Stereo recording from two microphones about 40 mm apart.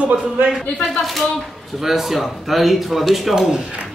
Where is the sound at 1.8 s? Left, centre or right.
Centre.